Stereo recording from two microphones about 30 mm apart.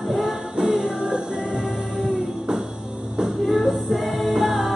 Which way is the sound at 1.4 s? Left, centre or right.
Centre.